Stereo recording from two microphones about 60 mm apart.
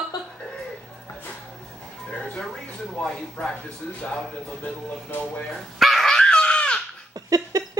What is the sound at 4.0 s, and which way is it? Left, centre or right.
Speech, centre.